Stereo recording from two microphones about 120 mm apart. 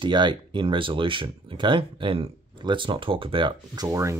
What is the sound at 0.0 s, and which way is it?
Speech, 40° right (ahead or behind).